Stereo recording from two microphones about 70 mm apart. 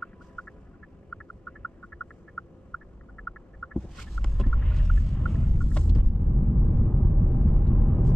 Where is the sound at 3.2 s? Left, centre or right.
Centre.